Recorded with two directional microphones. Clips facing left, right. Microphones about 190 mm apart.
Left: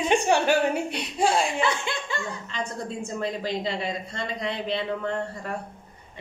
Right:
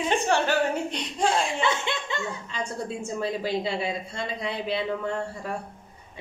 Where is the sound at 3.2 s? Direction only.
10° right (ahead or behind).